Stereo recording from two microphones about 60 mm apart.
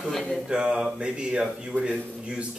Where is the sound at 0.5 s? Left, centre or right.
Centre.